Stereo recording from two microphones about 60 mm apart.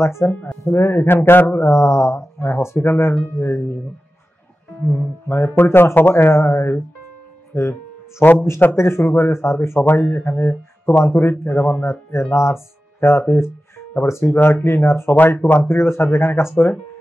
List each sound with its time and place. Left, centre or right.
0.0 s speech: left
0.3 s speech: left
0.7 s speech: left
1.1 s speech: left
1.6 s speech: left
4.9 s speech: left
8.2 s speech: left
8.7 s speech: left